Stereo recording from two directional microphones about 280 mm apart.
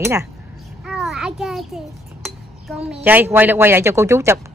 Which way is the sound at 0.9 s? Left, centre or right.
Centre.